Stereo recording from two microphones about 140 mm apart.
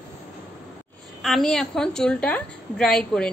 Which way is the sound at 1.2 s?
Centre (ahead or behind).